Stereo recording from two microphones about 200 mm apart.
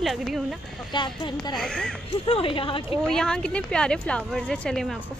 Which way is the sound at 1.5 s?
5° left (ahead or behind).